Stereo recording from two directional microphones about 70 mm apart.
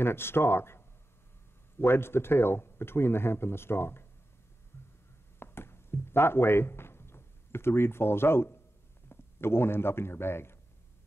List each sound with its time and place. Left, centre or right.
0.0 s speech: left
5.4 s a sound: left
9.1 s a man's voice: left